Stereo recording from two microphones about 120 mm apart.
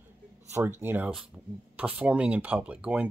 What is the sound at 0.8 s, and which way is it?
Speech, 15° right (ahead or behind).